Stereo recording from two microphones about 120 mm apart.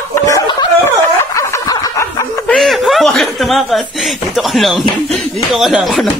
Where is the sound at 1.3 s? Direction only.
30° left (ahead or behind).